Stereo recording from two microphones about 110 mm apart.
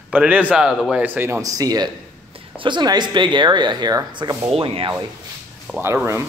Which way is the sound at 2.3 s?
50° right (ahead or behind).